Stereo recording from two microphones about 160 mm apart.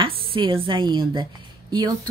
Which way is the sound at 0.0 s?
35° right (ahead or behind).